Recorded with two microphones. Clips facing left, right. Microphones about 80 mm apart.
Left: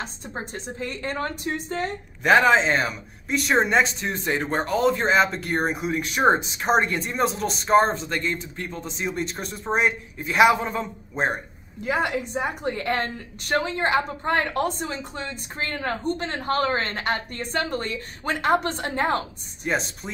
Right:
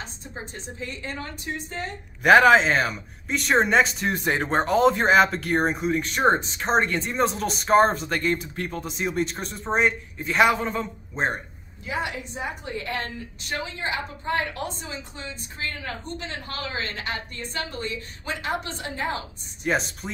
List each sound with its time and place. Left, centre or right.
0.0 s a woman's voice: left
2.2 s a man's voice: centre
11.8 s a woman's voice: left
19.6 s speech: centre